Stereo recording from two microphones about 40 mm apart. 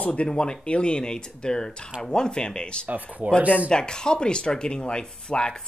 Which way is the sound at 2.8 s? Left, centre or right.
Right.